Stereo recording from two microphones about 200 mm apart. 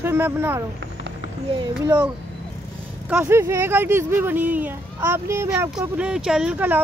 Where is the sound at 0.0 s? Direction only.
10° right (ahead or behind).